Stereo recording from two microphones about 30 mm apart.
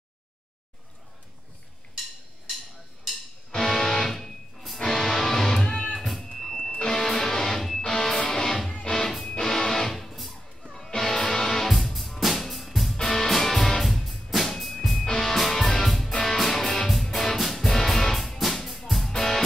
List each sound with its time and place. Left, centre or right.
3.5 s music: centre
5.9 s music: centre
6.6 s music: centre
11.7 s music: centre
12.9 s music: centre
16.1 s music: left
16.3 s music: centre